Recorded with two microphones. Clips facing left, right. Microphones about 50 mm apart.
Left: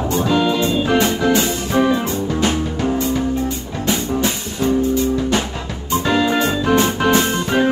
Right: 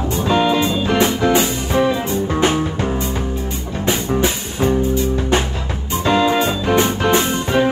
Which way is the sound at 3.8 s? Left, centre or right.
Right.